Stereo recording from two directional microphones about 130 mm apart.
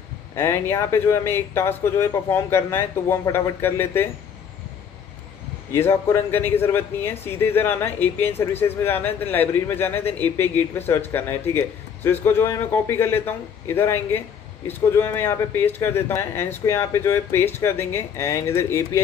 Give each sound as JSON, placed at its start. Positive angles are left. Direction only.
{"t": 0.4, "sound": "speech", "side_deg": 20}
{"t": 5.7, "sound": "a man's voice", "side_deg": 20}